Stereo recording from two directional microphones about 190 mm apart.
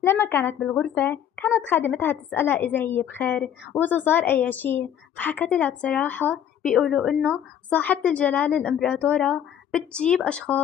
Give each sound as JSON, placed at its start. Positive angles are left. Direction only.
{"t": 0.0, "sound": "a woman's voice", "side_deg": 15}